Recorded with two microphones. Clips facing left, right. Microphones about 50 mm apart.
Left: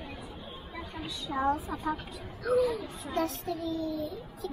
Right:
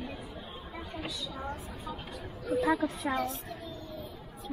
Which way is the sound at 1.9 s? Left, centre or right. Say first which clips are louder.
Left 8 dB; left.